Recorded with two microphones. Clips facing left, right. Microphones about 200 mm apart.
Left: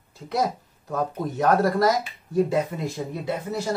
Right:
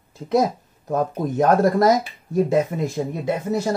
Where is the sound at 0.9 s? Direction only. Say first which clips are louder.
Right 5 dB; 45° right (ahead or behind).